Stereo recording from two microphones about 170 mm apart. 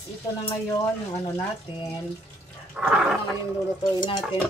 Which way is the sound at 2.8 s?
5° right (ahead or behind).